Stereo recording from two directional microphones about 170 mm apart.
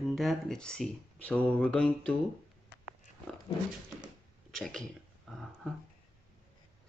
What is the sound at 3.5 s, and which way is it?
Dog, 30° left (ahead or behind).